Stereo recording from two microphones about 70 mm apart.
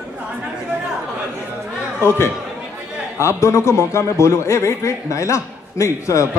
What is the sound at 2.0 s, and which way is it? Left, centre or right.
A man's voice, left.